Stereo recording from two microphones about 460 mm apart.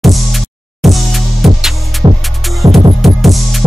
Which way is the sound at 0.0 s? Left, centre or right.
Centre.